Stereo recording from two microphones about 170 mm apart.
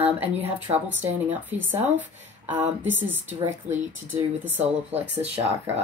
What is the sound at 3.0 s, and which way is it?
A woman's voice, 10° right (ahead or behind).